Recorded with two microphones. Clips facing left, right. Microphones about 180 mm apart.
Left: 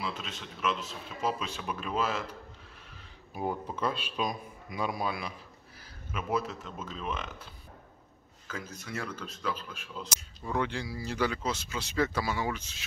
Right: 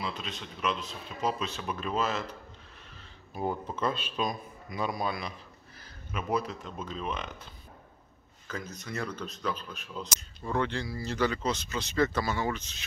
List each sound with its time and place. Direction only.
0.0 s speech: 5° left (ahead or behind)
3.3 s speech: 10° left (ahead or behind)
8.7 s speech: 5° left (ahead or behind)